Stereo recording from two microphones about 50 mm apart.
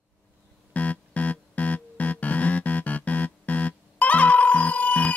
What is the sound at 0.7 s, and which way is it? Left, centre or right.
Music, left.